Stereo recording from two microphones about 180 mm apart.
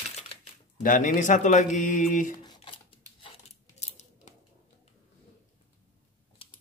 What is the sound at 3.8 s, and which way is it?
Scissors, 40° left (ahead or behind).